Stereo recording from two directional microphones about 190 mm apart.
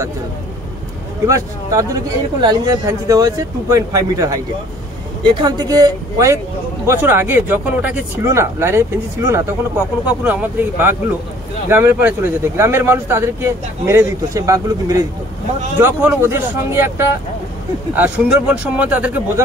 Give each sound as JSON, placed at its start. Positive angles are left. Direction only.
{"t": 1.2, "sound": "speech", "side_deg": -15}